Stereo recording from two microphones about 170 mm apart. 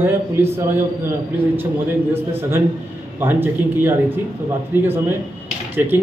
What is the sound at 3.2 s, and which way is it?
A man's voice, 10° right (ahead or behind).